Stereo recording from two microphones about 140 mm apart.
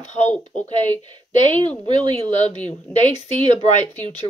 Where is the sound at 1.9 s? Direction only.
35° right (ahead or behind).